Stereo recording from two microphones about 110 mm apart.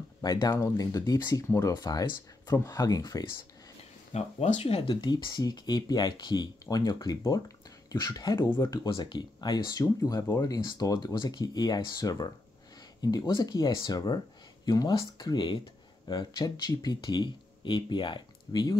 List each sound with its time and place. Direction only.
0.2 s speech: 40° left (ahead or behind)
4.1 s speech: 70° left (ahead or behind)
4.8 s speech: 40° left (ahead or behind)
8.9 s speech: 45° left (ahead or behind); by 10.4 s 30° left (ahead or behind)
10.4 s speech: 40° left (ahead or behind)